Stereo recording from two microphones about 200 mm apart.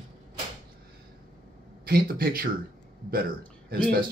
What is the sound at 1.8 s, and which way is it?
Speech, 50° right (ahead or behind).